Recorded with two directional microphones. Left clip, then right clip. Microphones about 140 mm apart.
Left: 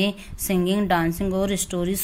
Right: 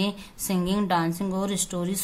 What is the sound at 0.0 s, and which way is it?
A woman's voice, 20° left (ahead or behind).